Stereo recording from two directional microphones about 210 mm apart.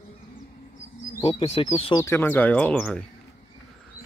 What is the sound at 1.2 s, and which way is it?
Speech, 25° left (ahead or behind).